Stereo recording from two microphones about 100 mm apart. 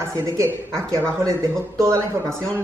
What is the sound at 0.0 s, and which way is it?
A man's voice, 25° right (ahead or behind).